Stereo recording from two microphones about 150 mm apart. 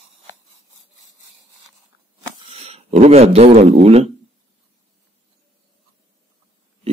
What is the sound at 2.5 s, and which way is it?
Speech, 50° right (ahead or behind).